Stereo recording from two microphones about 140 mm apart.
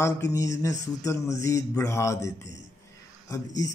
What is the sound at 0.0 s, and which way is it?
Speech, 20° left (ahead or behind).